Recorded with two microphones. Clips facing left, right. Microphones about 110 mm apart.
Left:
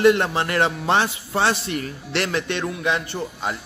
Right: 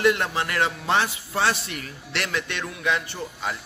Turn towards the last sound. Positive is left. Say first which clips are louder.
# left 4 dB
turn(degrees=25)  # may be behind; listen again after turning